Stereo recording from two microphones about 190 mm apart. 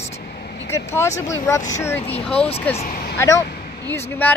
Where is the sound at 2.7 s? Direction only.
45° left (ahead or behind).